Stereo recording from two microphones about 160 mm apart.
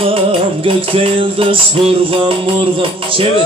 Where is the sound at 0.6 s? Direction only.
35° right (ahead or behind).